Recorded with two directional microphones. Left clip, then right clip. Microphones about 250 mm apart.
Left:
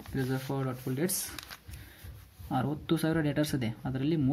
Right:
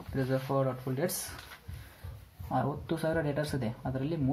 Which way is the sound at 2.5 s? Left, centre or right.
Left.